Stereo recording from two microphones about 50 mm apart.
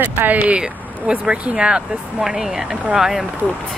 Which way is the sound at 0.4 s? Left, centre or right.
Right.